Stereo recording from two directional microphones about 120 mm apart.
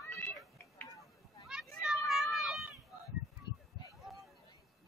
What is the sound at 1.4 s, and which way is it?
Children playing, 5° right (ahead or behind).